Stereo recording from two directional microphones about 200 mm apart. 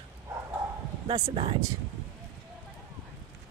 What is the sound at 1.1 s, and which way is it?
Speech, 30° right (ahead or behind).